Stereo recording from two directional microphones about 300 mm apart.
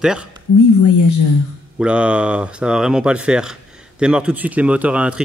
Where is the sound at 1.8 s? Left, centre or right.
Centre.